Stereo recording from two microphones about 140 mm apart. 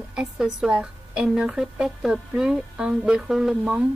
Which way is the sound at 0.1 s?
5° right (ahead or behind).